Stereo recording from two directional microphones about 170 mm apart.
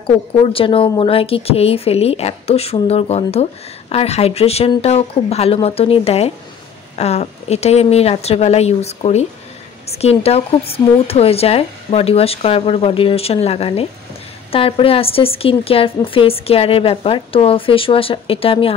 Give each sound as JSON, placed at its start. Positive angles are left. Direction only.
{"t": 0.0, "sound": "a woman's voice", "side_deg": 30}